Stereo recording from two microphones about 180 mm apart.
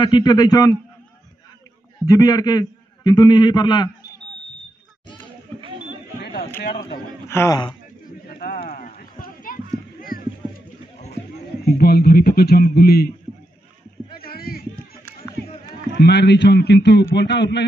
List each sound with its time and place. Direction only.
0.0 s a man's voice: 25° left (ahead or behind)
2.0 s a man's voice: 20° left (ahead or behind)
5.6 s a sound: 30° right (ahead or behind)
7.2 s speech: 15° left (ahead or behind)
8.3 s run: 55° left (ahead or behind)
9.9 s rowboat: 55° left (ahead or behind)
11.8 s speech: 60° left (ahead or behind)
14.1 s a sound: 55° left (ahead or behind)
15.0 s run: 15° left (ahead or behind)
15.9 s a man's voice: 70° left (ahead or behind)